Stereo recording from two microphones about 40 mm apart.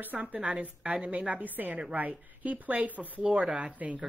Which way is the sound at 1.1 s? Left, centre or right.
Right.